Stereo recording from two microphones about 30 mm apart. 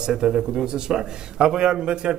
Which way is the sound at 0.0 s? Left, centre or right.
Right.